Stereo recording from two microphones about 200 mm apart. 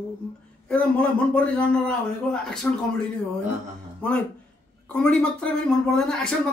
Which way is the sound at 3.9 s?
5° left (ahead or behind).